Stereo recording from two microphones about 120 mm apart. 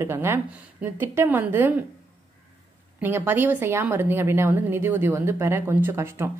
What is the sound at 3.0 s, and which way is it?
Speech, 20° right (ahead or behind).